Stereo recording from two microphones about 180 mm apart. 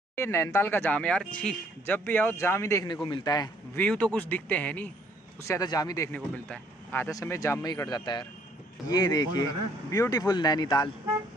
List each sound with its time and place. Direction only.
0.1 s speech: 15° left (ahead or behind)
3.7 s speech: 10° left (ahead or behind)
6.1 s speech: 10° left (ahead or behind)